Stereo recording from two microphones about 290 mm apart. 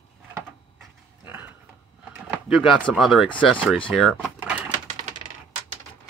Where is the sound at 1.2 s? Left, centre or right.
Centre.